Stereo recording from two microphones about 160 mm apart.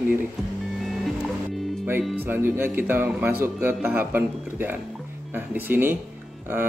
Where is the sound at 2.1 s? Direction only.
10° right (ahead or behind).